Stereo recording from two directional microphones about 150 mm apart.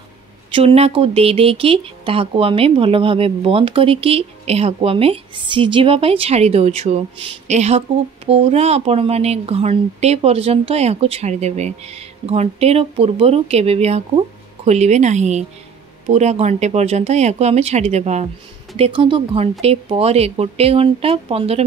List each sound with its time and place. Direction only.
0.6 s speech: 40° right (ahead or behind)
18.8 s speech: 35° right (ahead or behind)